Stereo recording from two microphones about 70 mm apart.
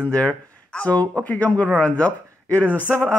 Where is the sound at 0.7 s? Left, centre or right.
Centre.